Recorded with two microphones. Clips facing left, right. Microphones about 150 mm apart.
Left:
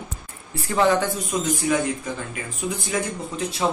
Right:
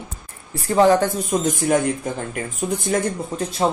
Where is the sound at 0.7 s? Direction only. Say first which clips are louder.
Right 5 dB; 40° right (ahead or behind).